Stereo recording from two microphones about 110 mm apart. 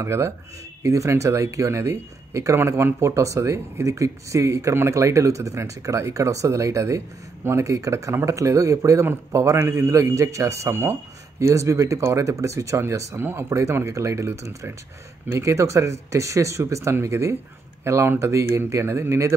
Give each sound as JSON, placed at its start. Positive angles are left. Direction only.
{"t": 0.0, "sound": "speech", "side_deg": -25}